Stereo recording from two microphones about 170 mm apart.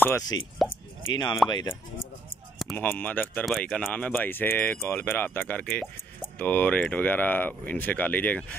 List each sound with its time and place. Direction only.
0.0 s speech: 15° left (ahead or behind)
2.6 s keys jangling: 5° left (ahead or behind)
2.9 s speech: 10° left (ahead or behind)